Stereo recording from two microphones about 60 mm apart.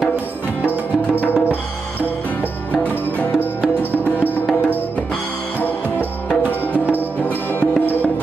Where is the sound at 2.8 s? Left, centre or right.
Left.